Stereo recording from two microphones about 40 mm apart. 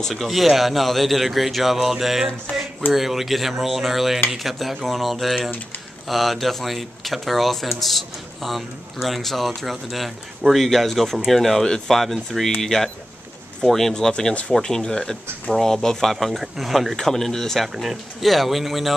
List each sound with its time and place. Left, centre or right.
0.1 s speech: centre
13.9 s speech: centre
15.5 s speech: centre
16.9 s speech: centre